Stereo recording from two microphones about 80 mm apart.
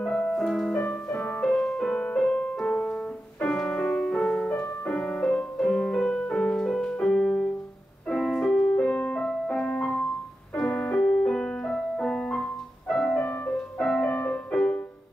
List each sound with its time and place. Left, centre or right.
0.0 s music: centre
10.5 s piano: centre
14.0 s music: centre